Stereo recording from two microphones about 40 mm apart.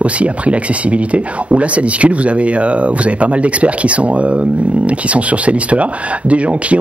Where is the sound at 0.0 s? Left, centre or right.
Right.